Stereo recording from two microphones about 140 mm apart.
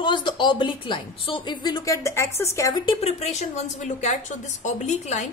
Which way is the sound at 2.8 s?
45° left (ahead or behind).